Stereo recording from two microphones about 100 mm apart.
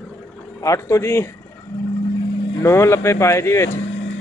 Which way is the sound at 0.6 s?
30° left (ahead or behind).